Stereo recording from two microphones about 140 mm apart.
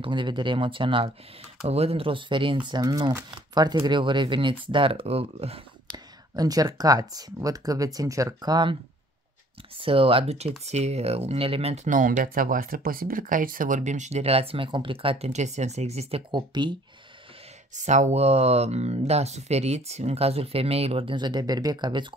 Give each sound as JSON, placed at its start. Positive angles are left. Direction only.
{"t": 0.0, "sound": "speech", "side_deg": -35}
{"t": 6.3, "sound": "speech", "side_deg": -25}
{"t": 9.8, "sound": "speech", "side_deg": -40}
{"t": 16.3, "sound": "speech", "side_deg": -30}
{"t": 17.7, "sound": "speech", "side_deg": -55}